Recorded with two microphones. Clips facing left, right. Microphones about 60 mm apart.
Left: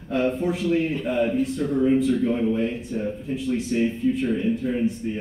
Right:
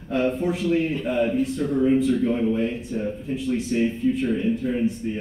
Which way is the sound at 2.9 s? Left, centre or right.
Centre.